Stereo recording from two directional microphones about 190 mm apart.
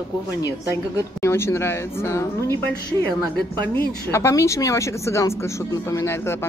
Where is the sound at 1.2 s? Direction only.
15° left (ahead or behind).